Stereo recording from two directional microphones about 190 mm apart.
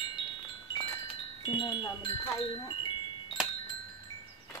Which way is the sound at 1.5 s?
25° left (ahead or behind).